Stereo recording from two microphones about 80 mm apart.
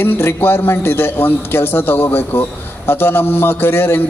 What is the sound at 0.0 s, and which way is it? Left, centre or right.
A man's voice, left.